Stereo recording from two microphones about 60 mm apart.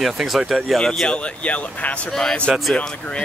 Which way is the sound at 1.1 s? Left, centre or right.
Left.